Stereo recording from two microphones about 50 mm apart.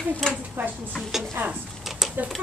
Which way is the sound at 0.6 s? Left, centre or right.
Right.